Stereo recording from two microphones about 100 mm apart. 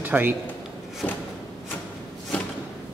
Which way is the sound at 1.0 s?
15° left (ahead or behind).